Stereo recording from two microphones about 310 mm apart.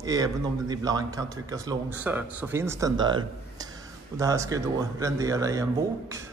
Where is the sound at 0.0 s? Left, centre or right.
Centre.